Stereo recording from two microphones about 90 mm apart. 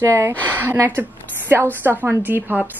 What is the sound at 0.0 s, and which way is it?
A woman's voice, 30° right (ahead or behind).